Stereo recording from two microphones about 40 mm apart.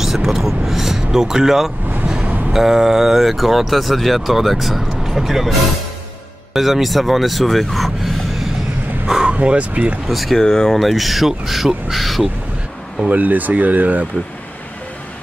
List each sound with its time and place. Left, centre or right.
0.0 s speech: centre
2.2 s a sound: right
2.5 s speech: centre
6.5 s speech: centre
9.0 s vehicle: centre
9.3 s speech: right
10.0 s speech: centre
10.4 s speech: centre
10.8 s speech: centre
13.0 s speech: right